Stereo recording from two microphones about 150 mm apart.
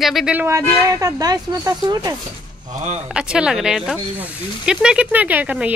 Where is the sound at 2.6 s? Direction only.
50° right (ahead or behind).